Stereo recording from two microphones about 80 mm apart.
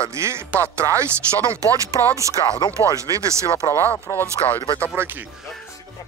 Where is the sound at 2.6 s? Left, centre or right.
Left.